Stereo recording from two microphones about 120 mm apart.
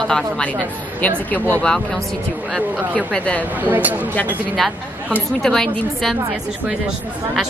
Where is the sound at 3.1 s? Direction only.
10° left (ahead or behind).